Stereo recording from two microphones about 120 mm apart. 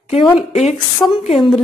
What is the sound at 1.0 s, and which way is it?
Speech, 25° left (ahead or behind).